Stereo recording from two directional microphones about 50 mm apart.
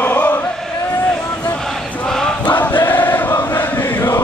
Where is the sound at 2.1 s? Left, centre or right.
Centre.